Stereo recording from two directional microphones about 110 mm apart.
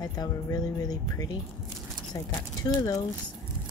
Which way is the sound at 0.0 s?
35° left (ahead or behind).